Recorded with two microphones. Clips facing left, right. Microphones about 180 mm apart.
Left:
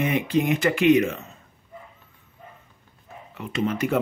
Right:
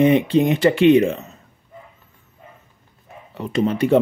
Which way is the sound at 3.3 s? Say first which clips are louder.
Right 6 dB; 35° right (ahead or behind).